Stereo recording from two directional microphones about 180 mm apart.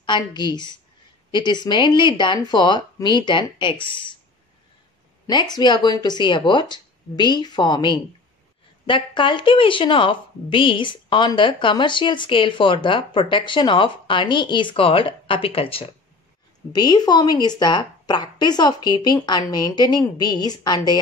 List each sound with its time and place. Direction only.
0.0 s a woman's voice: 25° left (ahead or behind)
5.2 s a woman's voice: 25° left (ahead or behind)